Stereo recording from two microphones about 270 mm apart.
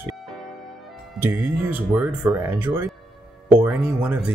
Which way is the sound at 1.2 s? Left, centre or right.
Centre.